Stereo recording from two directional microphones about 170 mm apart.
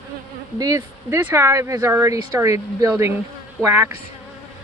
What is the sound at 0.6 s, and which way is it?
Speech, 20° right (ahead or behind).